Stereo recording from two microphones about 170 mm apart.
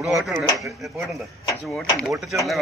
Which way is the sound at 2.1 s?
Centre (ahead or behind).